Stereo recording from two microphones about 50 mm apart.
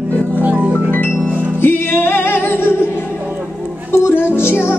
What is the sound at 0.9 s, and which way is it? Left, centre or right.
Music, left.